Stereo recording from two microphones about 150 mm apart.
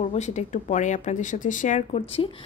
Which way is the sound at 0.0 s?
50° left (ahead or behind).